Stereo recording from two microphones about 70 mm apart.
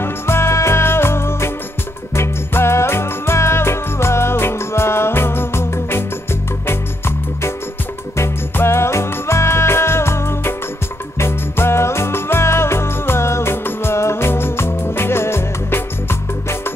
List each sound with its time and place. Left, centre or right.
0.0 s music: left